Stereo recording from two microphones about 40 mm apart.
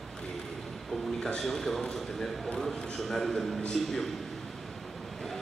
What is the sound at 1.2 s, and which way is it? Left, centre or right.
Speech, centre.